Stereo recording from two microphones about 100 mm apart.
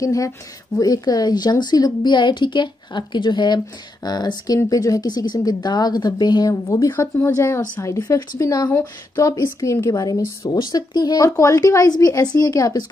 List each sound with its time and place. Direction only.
0.0 s a woman's voice: 35° left (ahead or behind)
6.9 s speech: 20° left (ahead or behind); by 10.6 s 35° left (ahead or behind)
10.6 s speech: 45° left (ahead or behind)